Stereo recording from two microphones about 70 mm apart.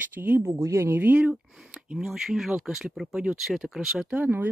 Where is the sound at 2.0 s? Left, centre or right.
Centre.